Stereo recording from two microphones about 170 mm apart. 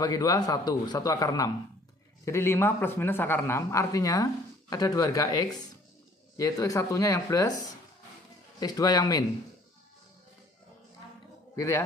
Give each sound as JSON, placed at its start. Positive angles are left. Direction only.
{"t": 0.0, "sound": "a man's voice", "side_deg": 20}
{"t": 11.5, "sound": "speech", "side_deg": 15}